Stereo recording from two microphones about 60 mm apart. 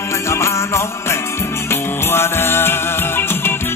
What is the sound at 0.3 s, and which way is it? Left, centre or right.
Music, left.